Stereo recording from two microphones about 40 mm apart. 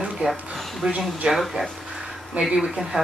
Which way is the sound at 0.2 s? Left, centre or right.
Right.